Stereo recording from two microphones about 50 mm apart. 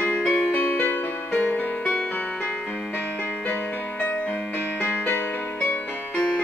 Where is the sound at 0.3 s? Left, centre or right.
Left.